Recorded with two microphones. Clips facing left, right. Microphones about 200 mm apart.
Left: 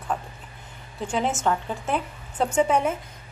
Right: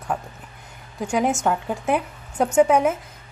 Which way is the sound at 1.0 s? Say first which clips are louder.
Right 4 dB; 10° right (ahead or behind).